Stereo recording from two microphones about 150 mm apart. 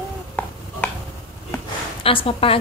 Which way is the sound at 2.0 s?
35° left (ahead or behind).